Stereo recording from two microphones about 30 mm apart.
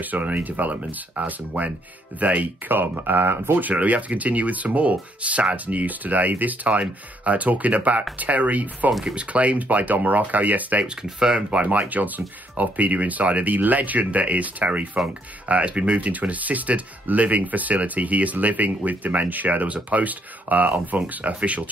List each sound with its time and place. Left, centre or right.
0.0 s speech: right
5.9 s speech: right
9.1 s speech: right
11.0 s speech: right
11.5 s speech: right
16.0 s speech: right
19.7 s speech: right